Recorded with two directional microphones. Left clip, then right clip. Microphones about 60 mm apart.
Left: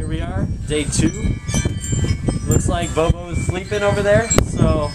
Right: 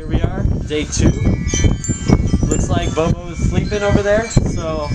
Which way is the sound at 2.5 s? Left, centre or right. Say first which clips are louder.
Even; centre.